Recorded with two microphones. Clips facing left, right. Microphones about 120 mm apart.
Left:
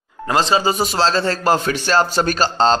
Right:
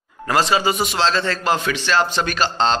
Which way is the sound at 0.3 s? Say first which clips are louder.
Left 1 dB; 30° left (ahead or behind).